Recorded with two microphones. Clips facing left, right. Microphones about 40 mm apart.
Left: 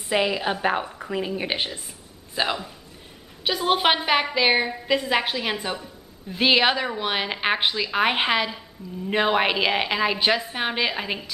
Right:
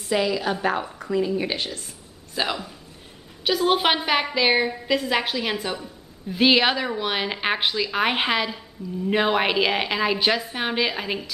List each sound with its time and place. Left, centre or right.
0.1 s a woman's voice: left
1.1 s a woman's voice: left; by 11.2 s centre